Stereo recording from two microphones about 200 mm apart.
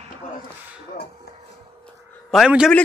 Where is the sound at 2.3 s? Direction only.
5° right (ahead or behind).